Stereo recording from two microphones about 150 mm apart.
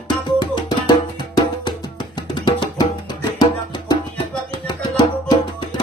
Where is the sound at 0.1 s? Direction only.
30° left (ahead or behind).